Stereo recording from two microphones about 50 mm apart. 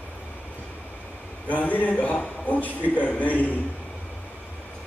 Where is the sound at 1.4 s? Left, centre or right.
Left.